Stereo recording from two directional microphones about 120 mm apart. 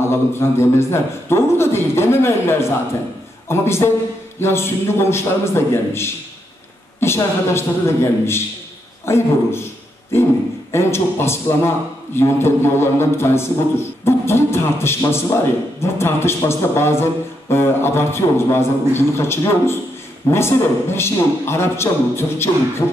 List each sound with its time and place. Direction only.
0.0 s a man's voice: 20° left (ahead or behind)
10.7 s a man's voice: 20° left (ahead or behind)